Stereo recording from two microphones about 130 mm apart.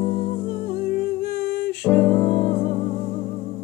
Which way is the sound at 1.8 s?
10° left (ahead or behind).